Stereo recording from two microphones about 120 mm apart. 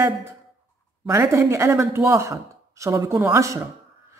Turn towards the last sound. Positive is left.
turn(degrees=-25)  # may be behind; listen again after turning